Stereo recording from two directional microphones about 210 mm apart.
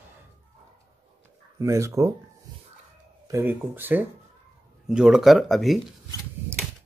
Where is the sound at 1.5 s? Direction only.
15° right (ahead or behind).